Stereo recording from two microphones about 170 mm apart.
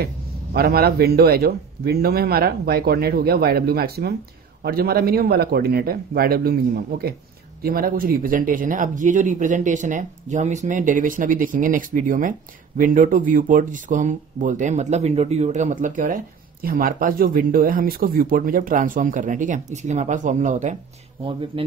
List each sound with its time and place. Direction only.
0.0 s a man's voice: 65° right (ahead or behind); by 20.7 s 45° right (ahead or behind)
21.2 s speech: 30° right (ahead or behind)